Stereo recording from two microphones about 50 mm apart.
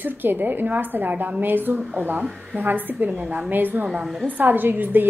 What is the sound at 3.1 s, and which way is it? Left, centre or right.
Speech, right.